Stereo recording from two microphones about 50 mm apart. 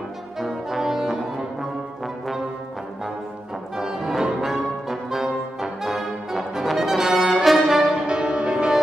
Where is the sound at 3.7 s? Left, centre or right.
Centre.